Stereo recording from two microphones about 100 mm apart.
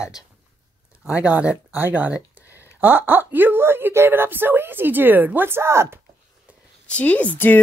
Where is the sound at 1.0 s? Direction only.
15° right (ahead or behind).